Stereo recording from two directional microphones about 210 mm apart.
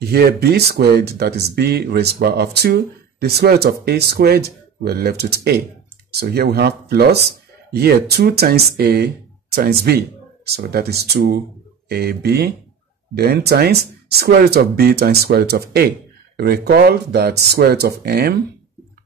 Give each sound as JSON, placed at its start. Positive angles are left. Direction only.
{"t": 0.0, "sound": "speech", "side_deg": -50}